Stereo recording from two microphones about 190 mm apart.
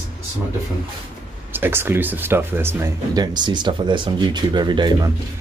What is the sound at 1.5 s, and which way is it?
Speech, 10° right (ahead or behind).